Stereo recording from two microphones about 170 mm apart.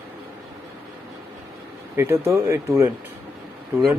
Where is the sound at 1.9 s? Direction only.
15° right (ahead or behind).